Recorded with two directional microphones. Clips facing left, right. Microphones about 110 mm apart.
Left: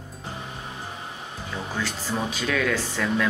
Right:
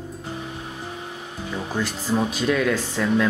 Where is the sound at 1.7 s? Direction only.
10° right (ahead or behind).